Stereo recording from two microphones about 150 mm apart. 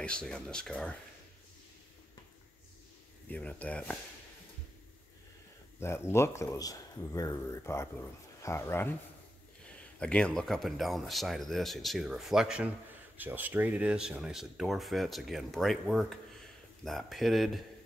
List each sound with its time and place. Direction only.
0.0 s speech: 5° left (ahead or behind)
3.3 s speech: 10° left (ahead or behind)
5.8 s speech: 15° left (ahead or behind); by 17.6 s centre (ahead or behind)